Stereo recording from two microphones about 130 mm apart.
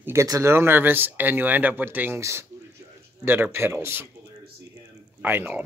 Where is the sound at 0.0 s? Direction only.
25° right (ahead or behind).